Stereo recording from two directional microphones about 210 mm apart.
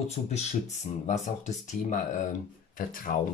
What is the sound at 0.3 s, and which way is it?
Speech, 30° left (ahead or behind).